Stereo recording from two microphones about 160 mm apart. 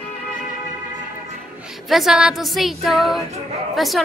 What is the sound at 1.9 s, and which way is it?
Speech, centre (ahead or behind).